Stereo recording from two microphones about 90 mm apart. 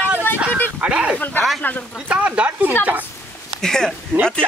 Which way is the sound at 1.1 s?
20° left (ahead or behind).